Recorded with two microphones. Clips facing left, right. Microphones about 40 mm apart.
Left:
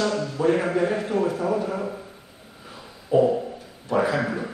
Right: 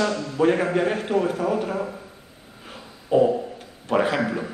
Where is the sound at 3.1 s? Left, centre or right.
Right.